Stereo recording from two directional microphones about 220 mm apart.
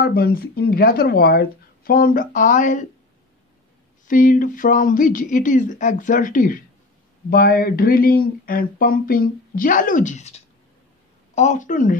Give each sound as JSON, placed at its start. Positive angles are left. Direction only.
{"t": 0.0, "sound": "speech", "side_deg": 45}
{"t": 4.1, "sound": "speech", "side_deg": 35}